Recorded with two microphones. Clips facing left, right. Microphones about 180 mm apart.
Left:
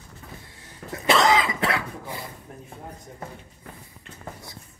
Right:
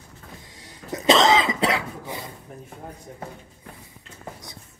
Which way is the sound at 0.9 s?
20° right (ahead or behind).